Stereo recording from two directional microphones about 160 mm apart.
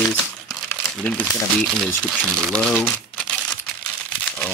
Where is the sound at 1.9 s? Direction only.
5° left (ahead or behind).